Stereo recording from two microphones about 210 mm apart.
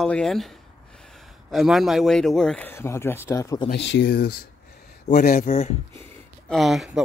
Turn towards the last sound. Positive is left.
turn(degrees=0)  # may be behind; listen again after turning